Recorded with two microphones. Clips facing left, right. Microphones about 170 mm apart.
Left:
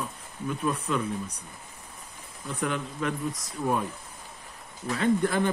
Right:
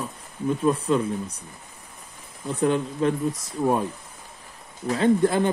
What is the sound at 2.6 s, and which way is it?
Speech, 30° right (ahead or behind).